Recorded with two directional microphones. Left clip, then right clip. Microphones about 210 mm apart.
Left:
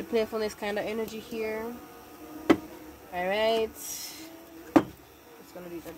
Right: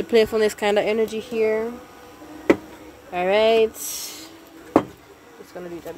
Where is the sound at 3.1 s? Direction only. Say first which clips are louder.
Right 9 dB; 55° right (ahead or behind).